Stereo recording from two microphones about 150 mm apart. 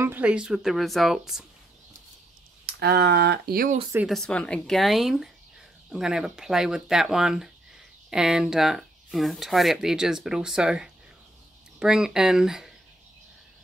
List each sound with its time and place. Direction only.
0.0 s speech: 10° right (ahead or behind)
2.6 s speech: 90° right
4.1 s speech: 5° left (ahead or behind)